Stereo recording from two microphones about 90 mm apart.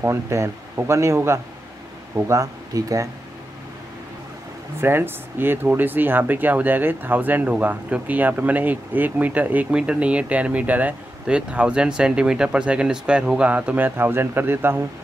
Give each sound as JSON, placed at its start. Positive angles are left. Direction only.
{"t": 0.0, "sound": "speech", "side_deg": -30}
{"t": 4.7, "sound": "speech", "side_deg": -25}